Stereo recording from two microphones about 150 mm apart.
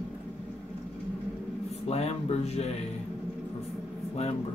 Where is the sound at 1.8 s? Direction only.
45° left (ahead or behind).